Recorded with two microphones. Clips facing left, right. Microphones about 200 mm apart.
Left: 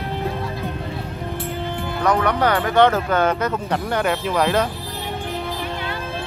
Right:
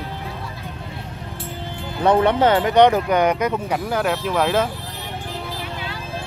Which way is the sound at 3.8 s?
Centre (ahead or behind).